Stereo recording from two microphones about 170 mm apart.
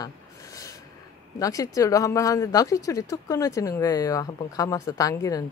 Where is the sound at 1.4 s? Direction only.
20° left (ahead or behind).